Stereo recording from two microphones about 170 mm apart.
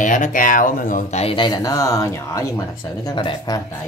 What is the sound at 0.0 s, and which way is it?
Speech, 50° left (ahead or behind).